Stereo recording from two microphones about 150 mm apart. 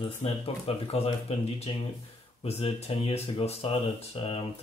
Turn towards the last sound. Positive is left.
turn(degrees=40)  # may be behind; listen again after turning